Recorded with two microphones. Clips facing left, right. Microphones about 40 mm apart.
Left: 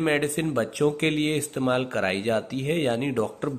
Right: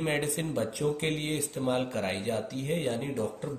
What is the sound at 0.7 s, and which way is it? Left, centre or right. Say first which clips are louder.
Speech: left 7 dB; left.